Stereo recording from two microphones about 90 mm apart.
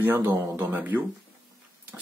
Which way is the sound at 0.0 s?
25° right (ahead or behind).